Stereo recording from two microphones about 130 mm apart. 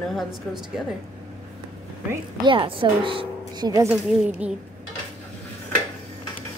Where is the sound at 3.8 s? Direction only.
5° right (ahead or behind).